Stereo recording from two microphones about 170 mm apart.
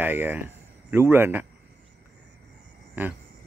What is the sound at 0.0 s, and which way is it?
Speech, 10° right (ahead or behind).